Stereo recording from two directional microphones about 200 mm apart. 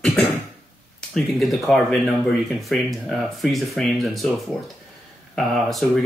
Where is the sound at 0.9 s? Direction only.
Centre (ahead or behind).